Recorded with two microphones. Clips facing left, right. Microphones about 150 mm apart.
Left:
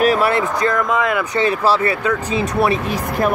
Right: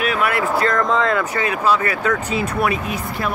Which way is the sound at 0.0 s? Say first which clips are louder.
Left 5 dB; 35° left (ahead or behind).